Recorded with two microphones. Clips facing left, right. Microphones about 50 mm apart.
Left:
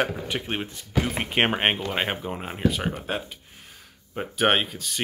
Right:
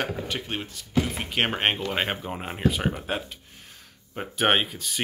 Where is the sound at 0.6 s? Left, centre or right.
Left.